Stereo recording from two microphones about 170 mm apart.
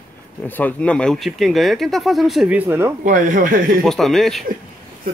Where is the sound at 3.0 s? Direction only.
50° right (ahead or behind).